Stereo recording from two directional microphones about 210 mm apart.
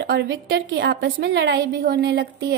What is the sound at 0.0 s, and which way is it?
A woman's voice, 55° right (ahead or behind).